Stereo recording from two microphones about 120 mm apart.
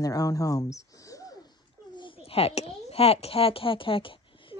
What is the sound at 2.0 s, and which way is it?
A child's voice, 50° left (ahead or behind).